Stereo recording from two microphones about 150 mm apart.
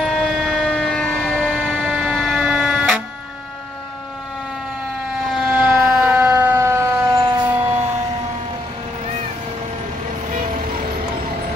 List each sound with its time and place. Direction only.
0.0 s siren: centre (ahead or behind)
1.9 s emergency vehicle: 5° right (ahead or behind)
5.4 s siren: 10° right (ahead or behind)
5.8 s fire engine: 5° right (ahead or behind); by 7.4 s 25° right (ahead or behind)
7.4 s siren: 10° right (ahead or behind)